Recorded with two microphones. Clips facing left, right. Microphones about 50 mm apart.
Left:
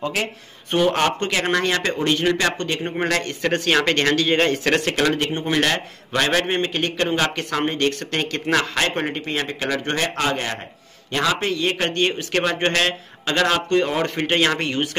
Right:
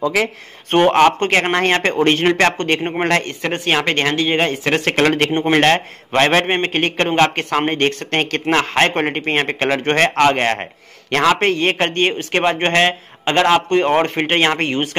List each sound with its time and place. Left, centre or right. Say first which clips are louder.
0.7 s a man's voice: right 7 dB; right
4.8 s a man's voice: right 5 dB; right